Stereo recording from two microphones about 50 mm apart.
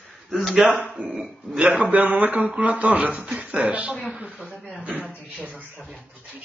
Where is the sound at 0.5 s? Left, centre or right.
Right.